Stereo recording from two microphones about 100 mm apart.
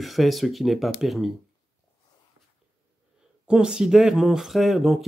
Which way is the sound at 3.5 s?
5° right (ahead or behind).